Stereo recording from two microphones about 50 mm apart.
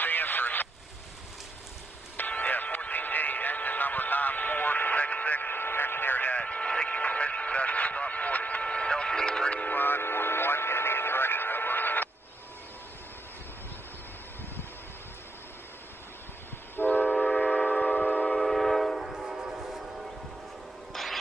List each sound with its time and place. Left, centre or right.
0.0 s vehicle: left
2.1 s radio: left
9.6 s radio: left
16.7 s train: left
18.4 s train: centre
19.1 s train: centre
20.9 s a sound: centre